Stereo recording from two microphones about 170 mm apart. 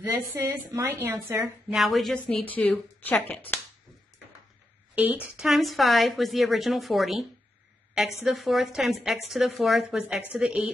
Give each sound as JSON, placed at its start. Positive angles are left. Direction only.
{"t": 0.4, "sound": "a woman's voice", "side_deg": -15}
{"t": 1.7, "sound": "a woman's voice", "side_deg": 0}
{"t": 4.9, "sound": "a woman's voice", "side_deg": -10}